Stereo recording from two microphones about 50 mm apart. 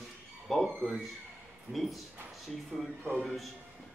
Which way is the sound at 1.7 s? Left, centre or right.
Centre.